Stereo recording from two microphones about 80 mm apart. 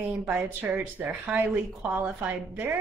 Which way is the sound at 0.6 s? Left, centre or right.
Right.